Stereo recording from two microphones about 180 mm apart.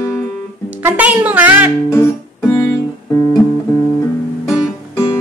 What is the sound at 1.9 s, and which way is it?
Music, 15° left (ahead or behind).